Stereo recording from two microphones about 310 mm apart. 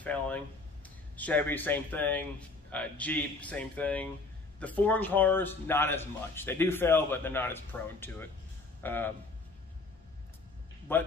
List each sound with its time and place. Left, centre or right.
0.0 s a sound: centre
0.8 s a man's voice: centre
10.9 s speech: centre